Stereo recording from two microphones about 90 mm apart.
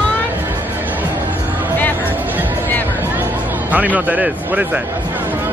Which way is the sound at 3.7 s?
15° right (ahead or behind).